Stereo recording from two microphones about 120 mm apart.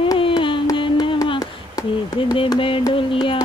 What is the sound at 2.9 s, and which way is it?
Music, 45° left (ahead or behind).